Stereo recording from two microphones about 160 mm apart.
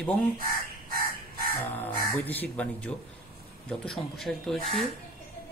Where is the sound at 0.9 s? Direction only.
60° right (ahead or behind).